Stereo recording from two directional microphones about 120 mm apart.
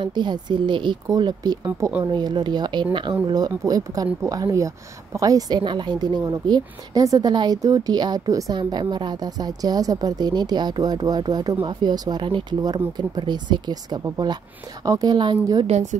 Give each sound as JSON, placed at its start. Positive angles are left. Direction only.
{"t": 0.0, "sound": "a woman's voice", "side_deg": -40}
{"t": 5.6, "sound": "speech", "side_deg": -40}
{"t": 15.6, "sound": "a woman's voice", "side_deg": -75}